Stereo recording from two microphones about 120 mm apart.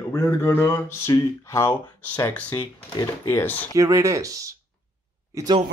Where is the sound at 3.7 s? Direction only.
25° right (ahead or behind).